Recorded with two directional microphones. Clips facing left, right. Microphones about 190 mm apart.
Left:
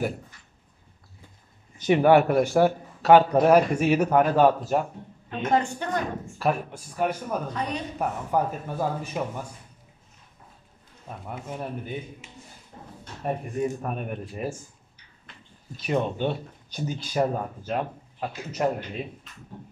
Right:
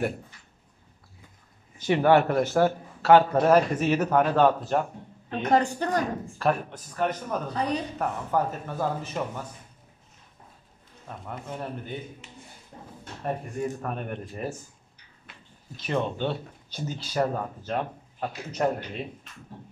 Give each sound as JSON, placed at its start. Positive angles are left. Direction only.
{"t": 1.8, "sound": "a man's voice", "side_deg": 15}
{"t": 5.4, "sound": "a woman's voice", "side_deg": -35}
{"t": 6.3, "sound": "a man's voice", "side_deg": 10}
{"t": 7.5, "sound": "a woman's voice", "side_deg": -35}
{"t": 8.0, "sound": "a man's voice", "side_deg": 10}
{"t": 11.1, "sound": "a man's voice", "side_deg": 10}
{"t": 15.3, "sound": "a sound", "side_deg": -5}
{"t": 15.7, "sound": "a man's voice", "side_deg": 10}
{"t": 17.7, "sound": "speech", "side_deg": 5}